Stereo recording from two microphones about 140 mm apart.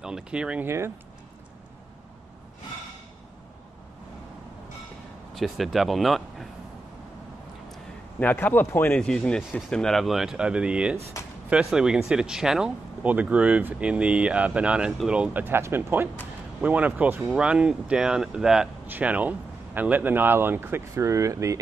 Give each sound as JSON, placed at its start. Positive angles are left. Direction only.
{"t": 0.0, "sound": "speech", "side_deg": -5}
{"t": 0.7, "sound": "speech", "side_deg": -20}
{"t": 5.3, "sound": "speech", "side_deg": 0}
{"t": 7.7, "sound": "a man's voice", "side_deg": 10}